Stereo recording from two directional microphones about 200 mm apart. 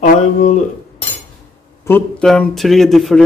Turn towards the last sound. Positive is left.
turn(degrees=0)  # may be behind; listen again after turning